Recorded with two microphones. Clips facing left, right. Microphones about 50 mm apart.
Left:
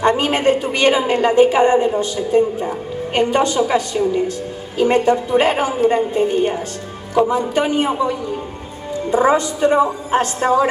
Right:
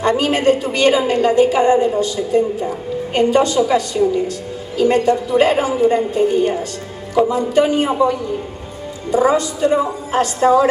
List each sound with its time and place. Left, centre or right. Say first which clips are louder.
0.0 s a woman's voice: even; left
9.1 s a woman's voice: even; left